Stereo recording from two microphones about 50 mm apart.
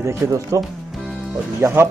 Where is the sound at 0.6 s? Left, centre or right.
Centre.